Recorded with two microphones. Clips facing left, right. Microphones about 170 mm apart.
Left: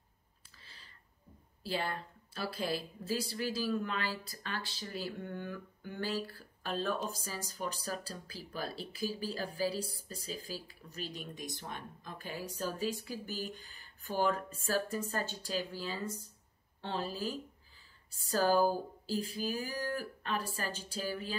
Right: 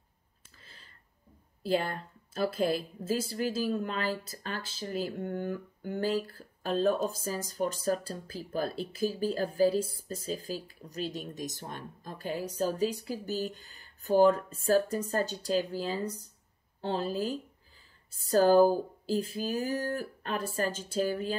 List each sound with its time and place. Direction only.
1.6 s a woman's voice: 45° right (ahead or behind)